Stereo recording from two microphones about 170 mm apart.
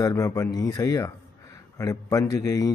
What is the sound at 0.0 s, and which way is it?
A man's voice, 20° left (ahead or behind).